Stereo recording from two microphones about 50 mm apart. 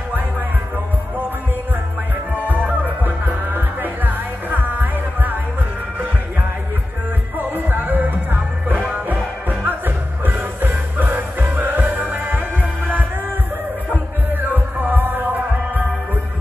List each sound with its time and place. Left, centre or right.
2.4 s music: right
7.3 s music: right
14.3 s music: right